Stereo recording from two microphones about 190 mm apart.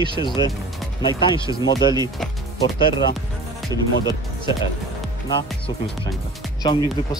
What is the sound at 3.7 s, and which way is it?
Speech, 20° left (ahead or behind).